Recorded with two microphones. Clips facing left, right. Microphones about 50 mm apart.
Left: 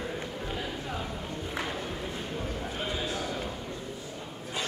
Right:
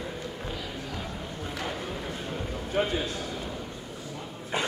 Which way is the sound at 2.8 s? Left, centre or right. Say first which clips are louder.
Right 9 dB; right.